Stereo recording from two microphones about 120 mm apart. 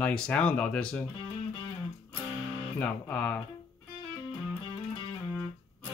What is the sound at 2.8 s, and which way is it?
Speech, 10° left (ahead or behind).